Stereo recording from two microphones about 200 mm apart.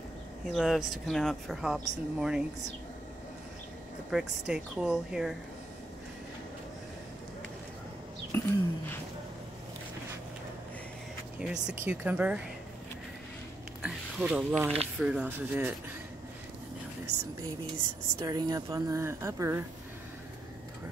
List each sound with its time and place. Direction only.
0.5 s speech: centre (ahead or behind)
4.1 s speech: 5° right (ahead or behind)
8.3 s a sound: 10° left (ahead or behind)
11.6 s a woman's voice: 10° right (ahead or behind)
13.8 s a woman's voice: 5° right (ahead or behind)
18.2 s a woman's voice: 20° right (ahead or behind)